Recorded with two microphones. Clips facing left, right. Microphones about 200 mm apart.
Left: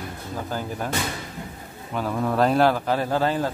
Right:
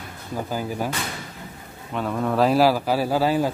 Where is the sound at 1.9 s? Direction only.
Centre (ahead or behind).